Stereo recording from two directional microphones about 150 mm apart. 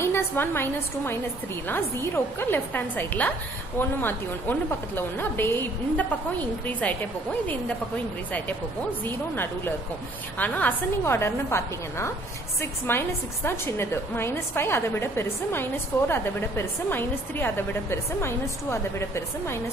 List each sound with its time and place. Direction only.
0.0 s a woman's voice: 15° left (ahead or behind)
9.0 s a woman's voice: 15° left (ahead or behind)